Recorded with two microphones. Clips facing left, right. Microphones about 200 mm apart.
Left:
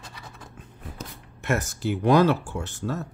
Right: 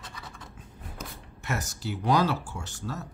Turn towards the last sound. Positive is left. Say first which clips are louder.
# left 6 dB
turn(degrees=55)  # may be behind; listen again after turning